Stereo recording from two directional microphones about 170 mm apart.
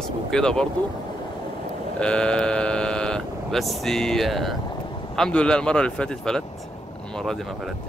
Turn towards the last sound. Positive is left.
turn(degrees=5)  # may be behind; listen again after turning